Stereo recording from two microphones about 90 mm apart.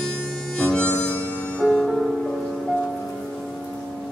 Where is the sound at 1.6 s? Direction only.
Centre (ahead or behind).